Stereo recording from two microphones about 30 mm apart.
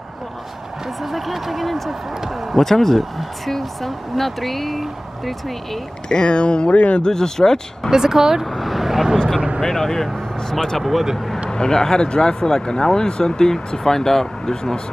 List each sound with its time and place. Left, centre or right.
1.0 s speech: centre
2.5 s speech: centre
6.0 s speech: left
6.7 s speech: left
7.1 s speech: centre
7.9 s speech: centre
8.5 s speech: centre
8.7 s vehicle: centre
9.6 s speech: centre
10.8 s speech: centre
11.5 s speech: left